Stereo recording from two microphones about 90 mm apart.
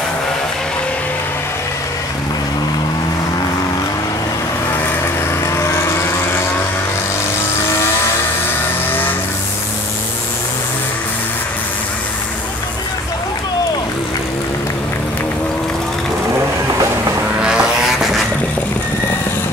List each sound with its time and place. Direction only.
5.0 s vehicle: 30° left (ahead or behind)
17.4 s vehicle: 10° right (ahead or behind)